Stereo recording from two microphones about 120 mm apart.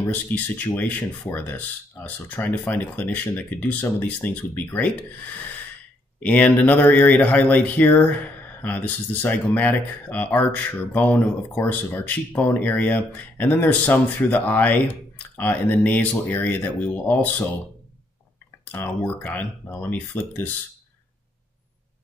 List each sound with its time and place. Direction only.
0.0 s speech: 15° left (ahead or behind)
6.1 s speech: 10° left (ahead or behind)
18.7 s speech: 15° left (ahead or behind)